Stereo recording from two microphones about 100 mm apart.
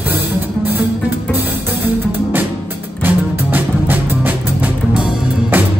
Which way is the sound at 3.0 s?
20° right (ahead or behind).